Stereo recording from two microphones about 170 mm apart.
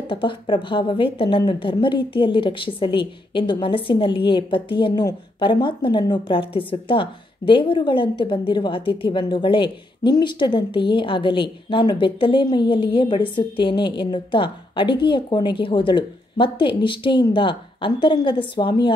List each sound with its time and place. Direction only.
0.1 s a woman's voice: 30° left (ahead or behind)